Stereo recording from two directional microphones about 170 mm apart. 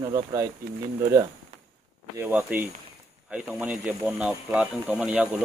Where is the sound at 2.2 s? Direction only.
10° right (ahead or behind).